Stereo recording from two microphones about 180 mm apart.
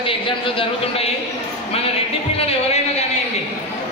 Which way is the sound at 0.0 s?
30° left (ahead or behind).